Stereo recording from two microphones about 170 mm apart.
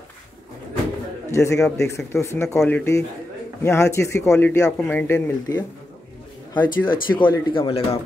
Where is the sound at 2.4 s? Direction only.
5° left (ahead or behind).